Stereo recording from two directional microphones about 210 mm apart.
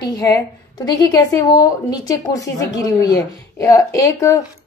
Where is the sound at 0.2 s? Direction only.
15° left (ahead or behind).